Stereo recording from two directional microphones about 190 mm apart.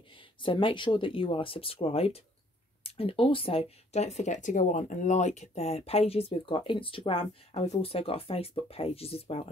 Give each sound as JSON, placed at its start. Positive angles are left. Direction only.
{"t": 0.4, "sound": "speech", "side_deg": 25}